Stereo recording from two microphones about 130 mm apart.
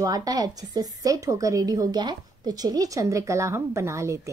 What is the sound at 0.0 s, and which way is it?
A woman's voice, 30° right (ahead or behind).